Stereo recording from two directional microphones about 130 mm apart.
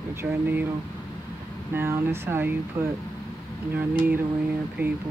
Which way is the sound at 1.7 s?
20° right (ahead or behind).